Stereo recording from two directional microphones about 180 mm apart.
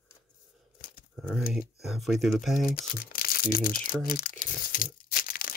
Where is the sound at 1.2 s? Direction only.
Centre (ahead or behind).